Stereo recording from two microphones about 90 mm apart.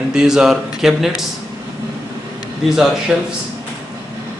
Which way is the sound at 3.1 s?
10° right (ahead or behind).